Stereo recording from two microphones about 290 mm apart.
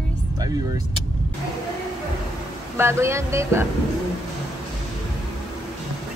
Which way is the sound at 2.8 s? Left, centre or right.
Centre.